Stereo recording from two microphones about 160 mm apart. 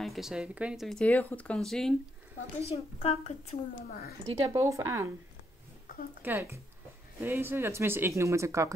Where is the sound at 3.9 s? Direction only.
70° left (ahead or behind).